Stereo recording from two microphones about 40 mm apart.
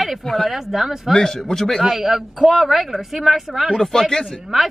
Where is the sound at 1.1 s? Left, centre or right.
Centre.